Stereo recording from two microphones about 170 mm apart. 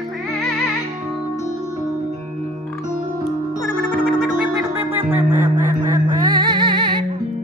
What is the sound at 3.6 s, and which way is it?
Music, 5° right (ahead or behind).